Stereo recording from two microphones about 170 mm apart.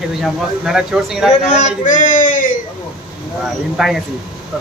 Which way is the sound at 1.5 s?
45° left (ahead or behind).